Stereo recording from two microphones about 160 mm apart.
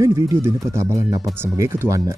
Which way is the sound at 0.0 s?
15° right (ahead or behind).